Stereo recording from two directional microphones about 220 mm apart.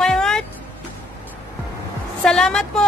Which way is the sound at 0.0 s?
Centre (ahead or behind).